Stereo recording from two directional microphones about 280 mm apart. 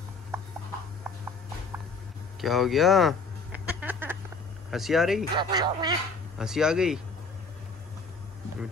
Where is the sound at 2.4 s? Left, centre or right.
Centre.